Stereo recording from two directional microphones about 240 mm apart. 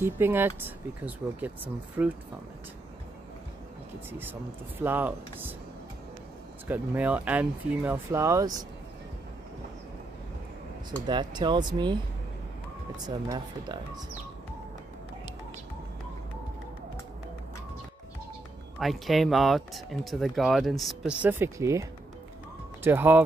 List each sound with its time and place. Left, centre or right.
0.0 s speech: centre
4.1 s speech: centre
6.7 s speech: centre
11.1 s speech: centre
13.0 s speech: centre
18.8 s speech: centre
22.8 s speech: centre